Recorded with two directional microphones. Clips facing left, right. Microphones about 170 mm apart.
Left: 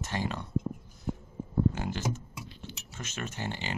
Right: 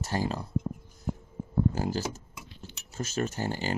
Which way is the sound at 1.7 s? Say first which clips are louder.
Right 3 dB; 35° right (ahead or behind).